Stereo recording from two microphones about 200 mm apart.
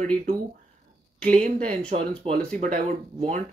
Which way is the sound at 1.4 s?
35° right (ahead or behind).